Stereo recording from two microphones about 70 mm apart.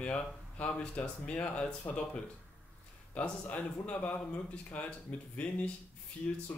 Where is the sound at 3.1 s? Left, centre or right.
Left.